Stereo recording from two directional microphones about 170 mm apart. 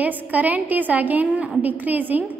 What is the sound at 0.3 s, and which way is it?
A woman's voice, 10° right (ahead or behind).